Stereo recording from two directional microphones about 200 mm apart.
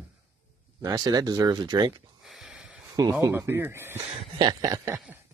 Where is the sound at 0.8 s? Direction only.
20° right (ahead or behind).